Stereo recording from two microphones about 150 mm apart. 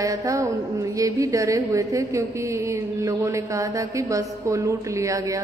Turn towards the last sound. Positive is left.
turn(degrees=-20)  # may be behind; listen again after turning